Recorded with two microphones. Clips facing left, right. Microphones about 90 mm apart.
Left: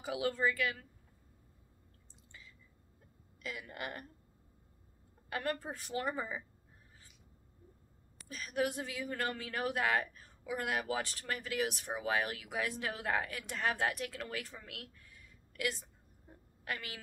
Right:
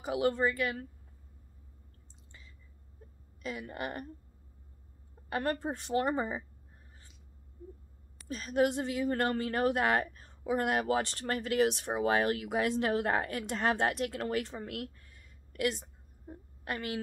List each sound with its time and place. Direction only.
0.3 s a woman's voice: 30° right (ahead or behind)
3.4 s a woman's voice: 30° right (ahead or behind)
5.3 s a woman's voice: 35° right (ahead or behind)
8.3 s a woman's voice: 30° right (ahead or behind)
12.0 s a woman's voice: 50° right (ahead or behind)
16.3 s a woman's voice: 30° right (ahead or behind)